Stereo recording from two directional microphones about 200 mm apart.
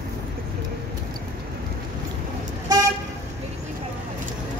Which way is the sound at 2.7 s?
20° right (ahead or behind).